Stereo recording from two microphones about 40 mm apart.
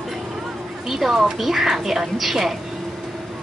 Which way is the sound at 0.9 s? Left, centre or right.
Centre.